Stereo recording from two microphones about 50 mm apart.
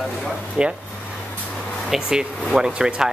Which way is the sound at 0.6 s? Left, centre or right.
Right.